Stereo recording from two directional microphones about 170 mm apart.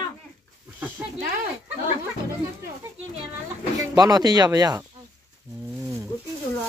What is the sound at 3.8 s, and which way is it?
Speech, 25° right (ahead or behind).